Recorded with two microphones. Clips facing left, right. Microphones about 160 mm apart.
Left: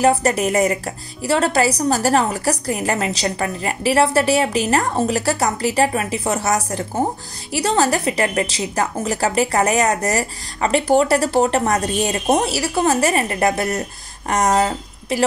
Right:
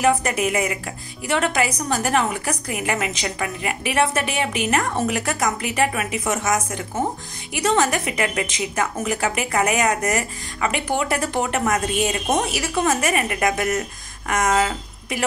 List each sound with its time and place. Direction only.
0.0 s a woman's voice: 35° left (ahead or behind)